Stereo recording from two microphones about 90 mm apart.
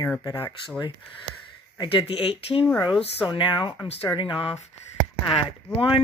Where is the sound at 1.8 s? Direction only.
80° left.